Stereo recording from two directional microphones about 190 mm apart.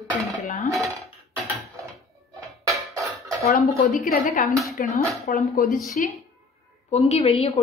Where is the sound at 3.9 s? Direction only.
50° left (ahead or behind).